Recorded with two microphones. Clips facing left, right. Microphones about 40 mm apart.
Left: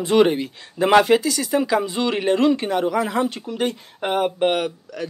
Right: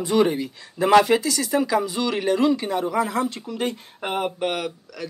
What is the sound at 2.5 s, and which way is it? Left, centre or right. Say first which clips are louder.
Speech: left 2 dB; left.